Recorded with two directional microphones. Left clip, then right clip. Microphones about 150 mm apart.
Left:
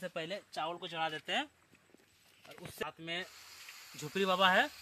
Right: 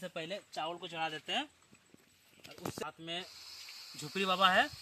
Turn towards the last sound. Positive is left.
turn(degrees=30)  # may be behind; listen again after turning